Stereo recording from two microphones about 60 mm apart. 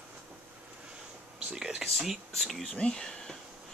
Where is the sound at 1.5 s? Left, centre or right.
Centre.